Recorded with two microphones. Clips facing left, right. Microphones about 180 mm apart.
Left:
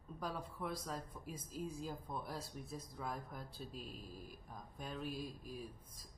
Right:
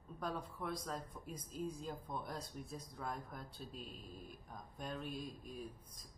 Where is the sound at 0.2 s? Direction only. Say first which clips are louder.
Right 1 dB; centre (ahead or behind).